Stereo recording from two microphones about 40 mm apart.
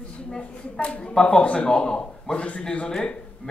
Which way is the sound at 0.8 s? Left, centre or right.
Left.